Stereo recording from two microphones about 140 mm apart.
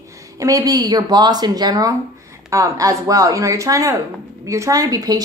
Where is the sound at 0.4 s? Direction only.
25° right (ahead or behind).